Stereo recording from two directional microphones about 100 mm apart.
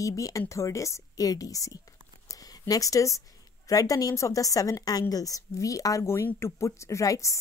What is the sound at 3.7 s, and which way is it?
Speech, 35° left (ahead or behind).